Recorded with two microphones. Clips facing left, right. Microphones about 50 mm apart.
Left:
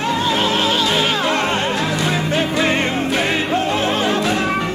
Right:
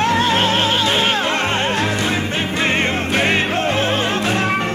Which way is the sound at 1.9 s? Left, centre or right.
Right.